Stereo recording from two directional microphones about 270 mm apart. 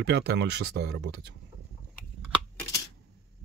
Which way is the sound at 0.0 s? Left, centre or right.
Right.